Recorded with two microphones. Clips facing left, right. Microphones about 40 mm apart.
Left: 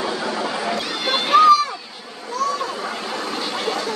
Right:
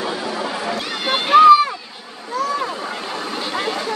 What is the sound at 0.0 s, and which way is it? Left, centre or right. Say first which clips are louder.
Boat: even; centre.